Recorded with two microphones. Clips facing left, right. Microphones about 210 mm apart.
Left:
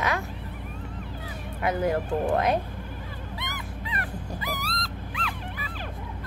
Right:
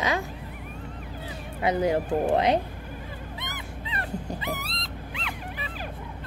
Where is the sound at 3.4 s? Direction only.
20° right (ahead or behind).